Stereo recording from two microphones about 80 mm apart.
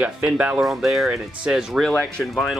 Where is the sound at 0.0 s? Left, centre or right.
Centre.